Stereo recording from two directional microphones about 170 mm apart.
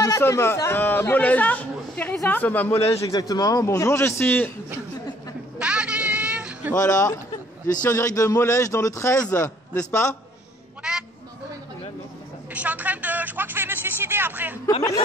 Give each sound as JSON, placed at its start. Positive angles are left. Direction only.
{"t": 0.0, "sound": "speech", "side_deg": 20}
{"t": 5.6, "sound": "a sound", "side_deg": -5}
{"t": 6.7, "sound": "speech", "side_deg": 20}
{"t": 10.8, "sound": "honk", "side_deg": -5}
{"t": 12.5, "sound": "speech", "side_deg": -10}
{"t": 14.7, "sound": "speech", "side_deg": 20}